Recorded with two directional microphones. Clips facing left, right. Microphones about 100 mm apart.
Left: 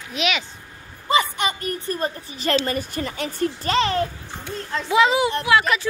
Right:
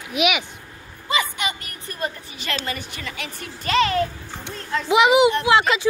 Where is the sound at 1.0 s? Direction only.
40° left (ahead or behind).